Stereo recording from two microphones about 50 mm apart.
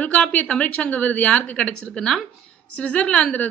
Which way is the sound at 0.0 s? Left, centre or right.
Left.